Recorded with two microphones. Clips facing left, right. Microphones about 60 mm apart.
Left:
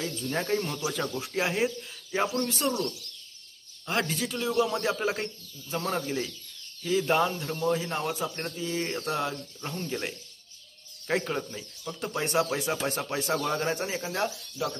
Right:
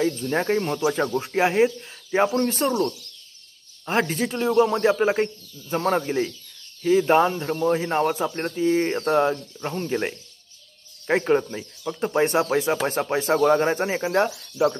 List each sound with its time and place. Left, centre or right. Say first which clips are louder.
0.0 s speech: right 8 dB; right
3.8 s speech: right 6 dB; right
14.6 s speech: right 11 dB; right